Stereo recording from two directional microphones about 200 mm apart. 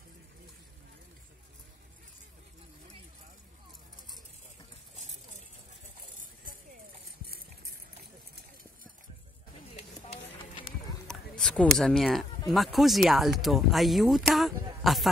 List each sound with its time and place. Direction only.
10.2 s clip-clop: 25° left (ahead or behind)
11.1 s speech: 5° left (ahead or behind)